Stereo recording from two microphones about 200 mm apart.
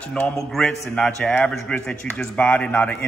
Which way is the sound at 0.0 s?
5° left (ahead or behind).